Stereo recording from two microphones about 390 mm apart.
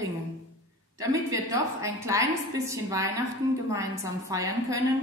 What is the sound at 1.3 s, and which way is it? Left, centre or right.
A woman's voice, centre.